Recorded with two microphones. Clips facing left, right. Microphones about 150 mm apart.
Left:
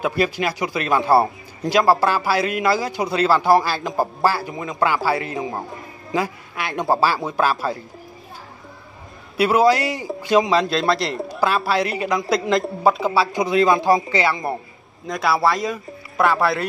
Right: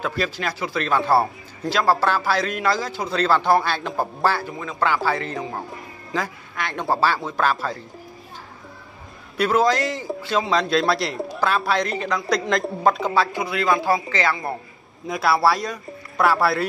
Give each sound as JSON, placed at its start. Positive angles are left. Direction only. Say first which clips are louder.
{"t": 0.0, "sound": "speech", "louder": "left 5 dB", "side_deg": 10}
{"t": 9.4, "sound": "speech", "louder": "left 3 dB", "side_deg": 10}
{"t": 10.5, "sound": "a man's voice", "louder": "left 1 dB", "side_deg": 0}
{"t": 13.3, "sound": "speech", "louder": "left 5 dB", "side_deg": 20}
{"t": 15.0, "sound": "a man's voice", "louder": "even", "side_deg": 0}